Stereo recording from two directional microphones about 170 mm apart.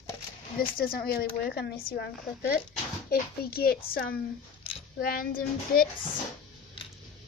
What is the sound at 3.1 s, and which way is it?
Speech, 65° left (ahead or behind).